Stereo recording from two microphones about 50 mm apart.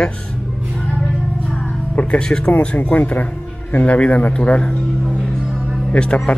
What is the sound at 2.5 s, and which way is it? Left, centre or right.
Speech, left.